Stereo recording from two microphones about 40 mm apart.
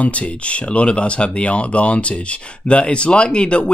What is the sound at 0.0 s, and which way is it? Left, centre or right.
Speech, left.